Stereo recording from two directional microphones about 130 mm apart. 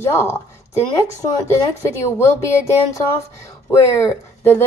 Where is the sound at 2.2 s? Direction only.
20° left (ahead or behind).